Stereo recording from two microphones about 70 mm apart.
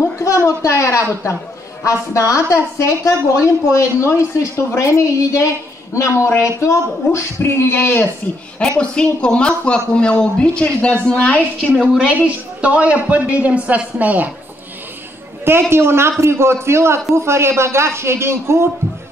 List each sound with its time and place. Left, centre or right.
0.6 s a woman's voice: left
8.5 s speech: centre
11.7 s a woman's voice: centre
12.2 s a woman's voice: centre
15.7 s a man's voice: right